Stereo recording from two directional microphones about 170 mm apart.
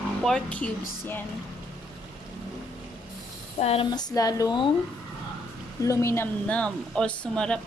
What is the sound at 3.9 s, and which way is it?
Speech, 25° left (ahead or behind).